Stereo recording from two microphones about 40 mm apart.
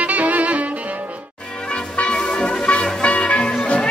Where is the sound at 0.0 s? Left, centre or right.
Right.